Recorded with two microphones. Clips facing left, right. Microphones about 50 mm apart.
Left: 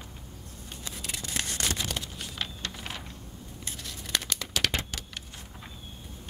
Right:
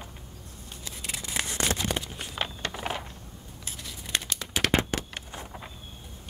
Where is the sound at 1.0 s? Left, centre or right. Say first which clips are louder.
Right 2 dB; centre; by 3.0 s right.